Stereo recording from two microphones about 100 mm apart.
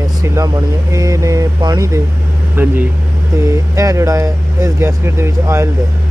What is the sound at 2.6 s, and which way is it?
Speech, 20° right (ahead or behind).